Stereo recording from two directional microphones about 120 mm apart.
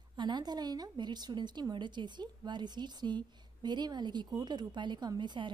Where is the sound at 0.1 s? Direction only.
40° right (ahead or behind).